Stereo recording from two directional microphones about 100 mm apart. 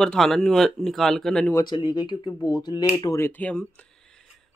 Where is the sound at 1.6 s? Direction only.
45° left (ahead or behind).